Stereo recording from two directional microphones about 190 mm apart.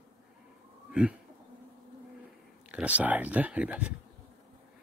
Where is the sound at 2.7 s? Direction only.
5° right (ahead or behind).